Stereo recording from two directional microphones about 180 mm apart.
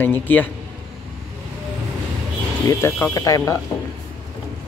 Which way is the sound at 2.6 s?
15° left (ahead or behind).